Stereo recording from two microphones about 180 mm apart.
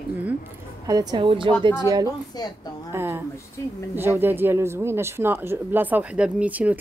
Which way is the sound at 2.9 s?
15° right (ahead or behind).